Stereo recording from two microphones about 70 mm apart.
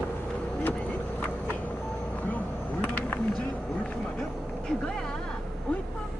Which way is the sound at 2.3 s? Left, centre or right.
Left.